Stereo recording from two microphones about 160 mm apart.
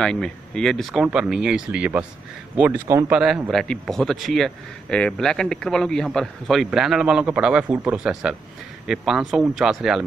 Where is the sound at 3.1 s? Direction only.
5° right (ahead or behind).